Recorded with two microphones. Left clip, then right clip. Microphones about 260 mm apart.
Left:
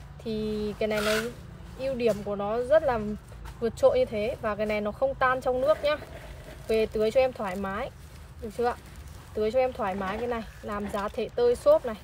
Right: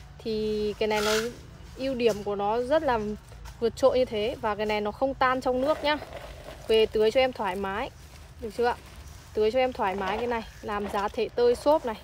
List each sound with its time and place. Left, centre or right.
0.2 s speech: right
9.4 s speech: right